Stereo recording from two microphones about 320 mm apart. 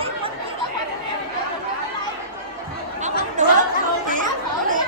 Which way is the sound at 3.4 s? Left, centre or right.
Right.